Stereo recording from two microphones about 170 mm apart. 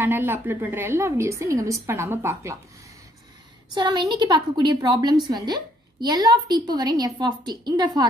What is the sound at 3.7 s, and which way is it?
A woman's voice, 25° right (ahead or behind).